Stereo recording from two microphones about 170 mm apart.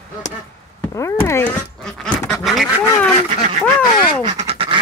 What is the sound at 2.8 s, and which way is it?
Speech, 20° left (ahead or behind).